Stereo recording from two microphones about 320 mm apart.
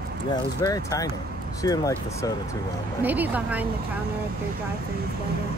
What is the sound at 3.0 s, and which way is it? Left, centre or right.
Speech, centre.